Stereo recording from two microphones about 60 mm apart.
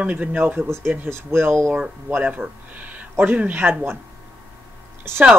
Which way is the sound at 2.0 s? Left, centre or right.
Right.